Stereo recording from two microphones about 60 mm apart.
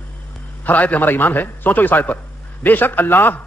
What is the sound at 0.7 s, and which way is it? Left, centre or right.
A man's voice, left.